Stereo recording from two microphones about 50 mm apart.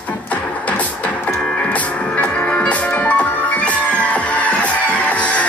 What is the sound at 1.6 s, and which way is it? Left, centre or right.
Music, left.